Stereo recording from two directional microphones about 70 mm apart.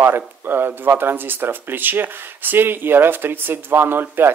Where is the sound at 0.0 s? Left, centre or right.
Right.